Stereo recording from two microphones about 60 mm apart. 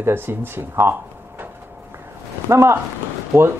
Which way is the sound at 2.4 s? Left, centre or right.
Right.